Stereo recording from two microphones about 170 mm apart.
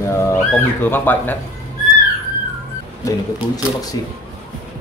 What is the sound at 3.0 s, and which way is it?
Speech, 20° left (ahead or behind).